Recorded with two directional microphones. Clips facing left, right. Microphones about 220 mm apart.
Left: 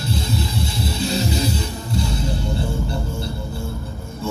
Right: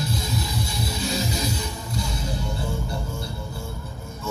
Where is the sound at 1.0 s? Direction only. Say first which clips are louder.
Left 5 dB; 30° left (ahead or behind).